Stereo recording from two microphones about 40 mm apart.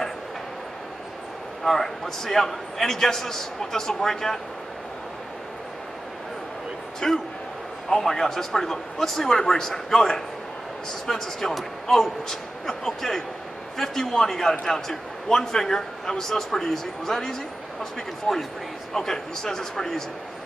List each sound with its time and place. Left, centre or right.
1.6 s a man's voice: centre
7.0 s a man's voice: left
7.9 s a man's voice: centre